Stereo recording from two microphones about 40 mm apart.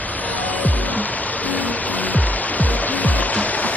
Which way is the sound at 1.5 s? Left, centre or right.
Left.